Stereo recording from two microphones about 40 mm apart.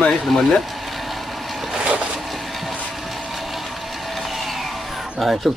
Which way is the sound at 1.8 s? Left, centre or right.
Right.